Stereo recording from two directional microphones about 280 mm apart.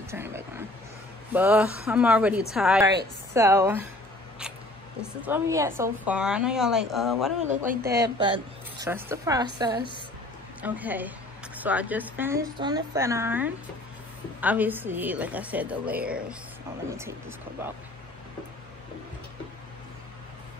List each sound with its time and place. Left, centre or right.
0.1 s vehicle: centre
1.3 s a woman's voice: centre
5.0 s a woman's voice: centre
7.4 s speech: right
7.9 s a woman's voice: centre